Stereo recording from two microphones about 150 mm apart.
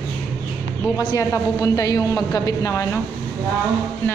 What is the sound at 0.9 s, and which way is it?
Speech, 25° left (ahead or behind).